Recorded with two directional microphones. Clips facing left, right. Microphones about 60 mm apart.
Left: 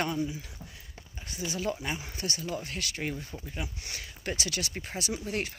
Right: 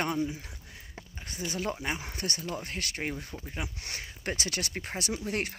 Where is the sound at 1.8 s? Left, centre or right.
Right.